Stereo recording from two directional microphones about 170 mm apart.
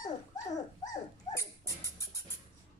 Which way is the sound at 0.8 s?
20° left (ahead or behind).